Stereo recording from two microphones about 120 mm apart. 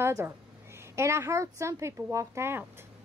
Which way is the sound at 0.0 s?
20° right (ahead or behind).